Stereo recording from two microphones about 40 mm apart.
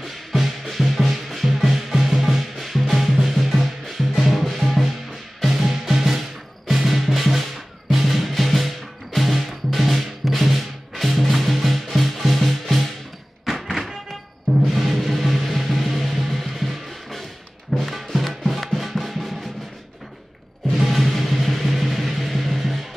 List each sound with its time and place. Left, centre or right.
0.0 s music: centre
13.5 s thunk: centre
14.7 s music: centre
20.7 s music: centre